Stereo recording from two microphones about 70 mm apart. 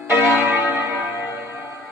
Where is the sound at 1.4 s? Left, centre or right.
Right.